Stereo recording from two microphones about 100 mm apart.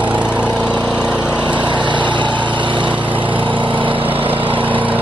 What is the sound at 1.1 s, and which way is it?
Lawn mower, 10° right (ahead or behind).